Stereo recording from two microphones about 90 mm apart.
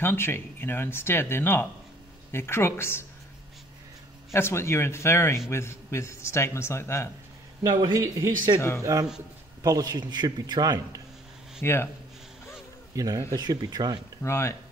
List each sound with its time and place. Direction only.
0.0 s speech: 25° left (ahead or behind)
4.3 s speech: 30° left (ahead or behind)
7.6 s a man's voice: 55° right (ahead or behind)
8.5 s speech: 30° left (ahead or behind)
9.6 s a man's voice: 45° right (ahead or behind)
11.6 s speech: 30° left (ahead or behind)
12.9 s a man's voice: 40° right (ahead or behind)
14.2 s speech: 30° left (ahead or behind)